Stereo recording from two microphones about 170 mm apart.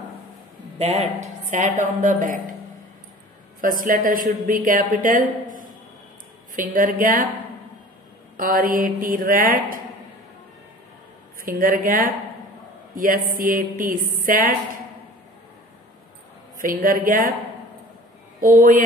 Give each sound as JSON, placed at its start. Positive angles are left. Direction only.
{"t": 0.7, "sound": "a woman's voice", "side_deg": -40}
{"t": 3.6, "sound": "a woman's voice", "side_deg": -55}
{"t": 6.5, "sound": "a woman's voice", "side_deg": -55}
{"t": 8.4, "sound": "a woman's voice", "side_deg": -55}
{"t": 11.4, "sound": "a woman's voice", "side_deg": -55}
{"t": 16.5, "sound": "a woman's voice", "side_deg": -55}
{"t": 18.4, "sound": "a woman's voice", "side_deg": -55}